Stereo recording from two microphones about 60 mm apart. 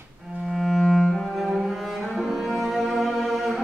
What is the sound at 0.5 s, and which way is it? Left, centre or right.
Cello, centre.